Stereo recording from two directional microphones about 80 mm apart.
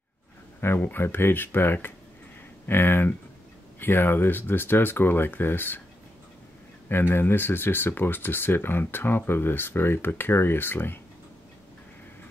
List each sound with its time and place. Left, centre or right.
0.7 s speech: left
6.9 s speech: left